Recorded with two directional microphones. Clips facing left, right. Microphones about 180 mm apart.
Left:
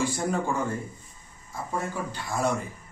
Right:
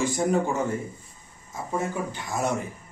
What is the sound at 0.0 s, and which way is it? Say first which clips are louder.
Speech: right 4 dB; 20° right (ahead or behind).